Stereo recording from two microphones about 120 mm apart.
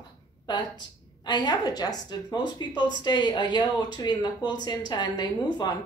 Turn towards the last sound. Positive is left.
turn(degrees=35)  # may be behind; listen again after turning